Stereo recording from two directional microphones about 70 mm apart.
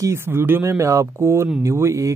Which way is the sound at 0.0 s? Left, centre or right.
Right.